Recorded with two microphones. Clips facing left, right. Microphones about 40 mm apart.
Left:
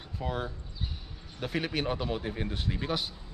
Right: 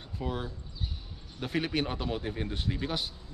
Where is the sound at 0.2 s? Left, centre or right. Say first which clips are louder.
Left 1 dB; centre.